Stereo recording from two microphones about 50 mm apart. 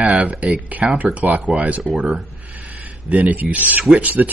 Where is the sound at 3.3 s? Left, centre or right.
Right.